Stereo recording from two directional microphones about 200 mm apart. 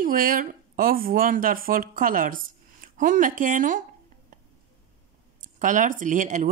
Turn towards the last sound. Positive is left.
turn(degrees=-40)  # may be behind; listen again after turning